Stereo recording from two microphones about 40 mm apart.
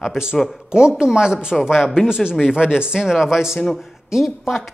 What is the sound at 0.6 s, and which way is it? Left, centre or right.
A woman's voice, right.